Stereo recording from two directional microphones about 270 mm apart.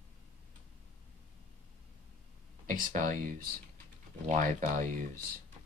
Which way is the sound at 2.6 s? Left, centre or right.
Right.